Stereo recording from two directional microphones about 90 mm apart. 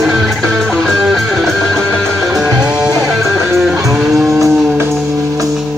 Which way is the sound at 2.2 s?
10° right (ahead or behind).